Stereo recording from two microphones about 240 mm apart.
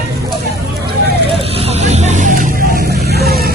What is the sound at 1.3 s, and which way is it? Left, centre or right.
Vehicle, right.